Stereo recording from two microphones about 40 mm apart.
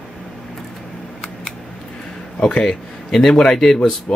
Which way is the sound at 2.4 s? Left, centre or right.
Left.